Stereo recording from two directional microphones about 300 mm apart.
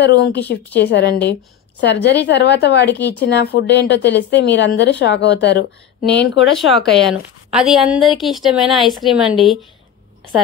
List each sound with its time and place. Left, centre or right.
0.0 s a woman's voice: left
6.5 s a woman's voice: centre